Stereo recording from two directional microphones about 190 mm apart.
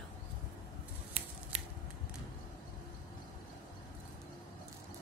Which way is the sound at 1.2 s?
30° right (ahead or behind).